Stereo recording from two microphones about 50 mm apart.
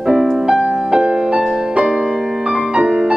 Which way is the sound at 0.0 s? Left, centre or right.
Centre.